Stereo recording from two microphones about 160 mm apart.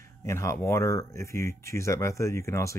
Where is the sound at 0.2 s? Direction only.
15° left (ahead or behind).